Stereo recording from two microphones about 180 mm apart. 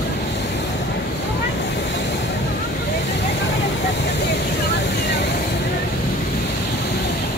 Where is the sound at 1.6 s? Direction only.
75° left (ahead or behind).